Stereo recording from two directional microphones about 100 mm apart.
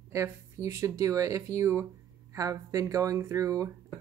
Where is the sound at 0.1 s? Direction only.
30° right (ahead or behind).